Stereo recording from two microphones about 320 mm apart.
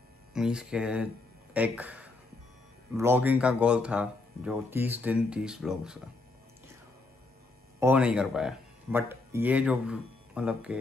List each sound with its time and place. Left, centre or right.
0.3 s speech: centre
7.8 s speech: centre